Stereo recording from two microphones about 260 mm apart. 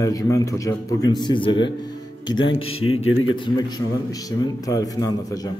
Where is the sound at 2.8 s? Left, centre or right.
Left.